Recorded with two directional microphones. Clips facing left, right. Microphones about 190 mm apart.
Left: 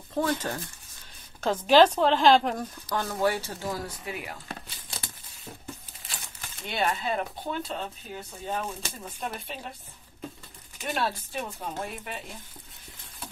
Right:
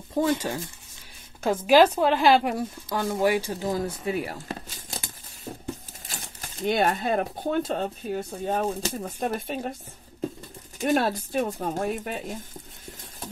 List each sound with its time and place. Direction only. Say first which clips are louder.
0.1 s speech: right 4 dB; 15° right (ahead or behind)
1.7 s speech: right 1 dB; 10° right (ahead or behind); by 5.0 s 40° right (ahead or behind)
6.0 s speech: right 3 dB; 45° right (ahead or behind)
10.8 s speech: right 7 dB; 45° right (ahead or behind)